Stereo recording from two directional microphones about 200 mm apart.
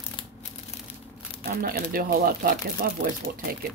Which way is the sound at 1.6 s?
45° right (ahead or behind).